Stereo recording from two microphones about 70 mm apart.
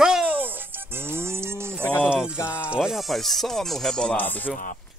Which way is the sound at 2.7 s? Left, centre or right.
Centre.